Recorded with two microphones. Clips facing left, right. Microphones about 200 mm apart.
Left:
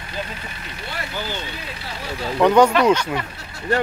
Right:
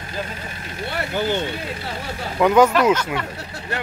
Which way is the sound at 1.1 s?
55° right (ahead or behind).